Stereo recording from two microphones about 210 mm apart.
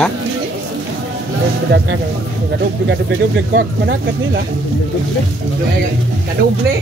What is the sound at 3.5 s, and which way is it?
Speech, 55° right (ahead or behind).